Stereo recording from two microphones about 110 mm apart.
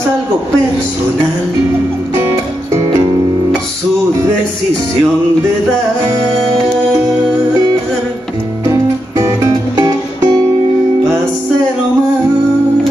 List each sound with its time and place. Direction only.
8.6 s music: 30° right (ahead or behind)